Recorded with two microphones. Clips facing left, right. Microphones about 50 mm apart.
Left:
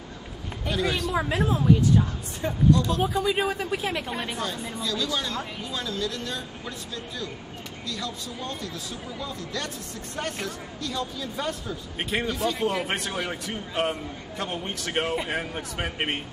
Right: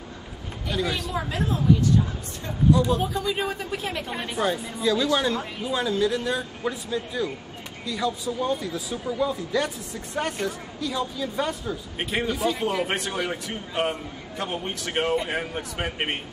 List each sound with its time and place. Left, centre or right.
0.7 s speech: centre
1.1 s a woman's voice: left
2.7 s speech: centre
3.1 s speech: centre
4.7 s speech: centre